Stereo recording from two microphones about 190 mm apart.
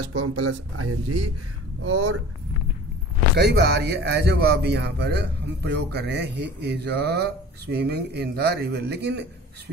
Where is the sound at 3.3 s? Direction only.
60° right (ahead or behind).